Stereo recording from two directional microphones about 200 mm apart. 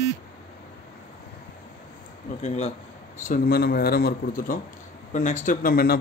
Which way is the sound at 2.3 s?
35° left (ahead or behind).